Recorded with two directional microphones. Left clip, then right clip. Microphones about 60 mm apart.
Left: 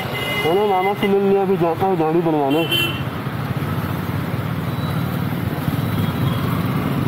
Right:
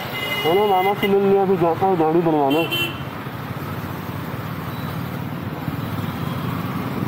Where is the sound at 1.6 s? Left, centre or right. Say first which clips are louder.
Even; centre.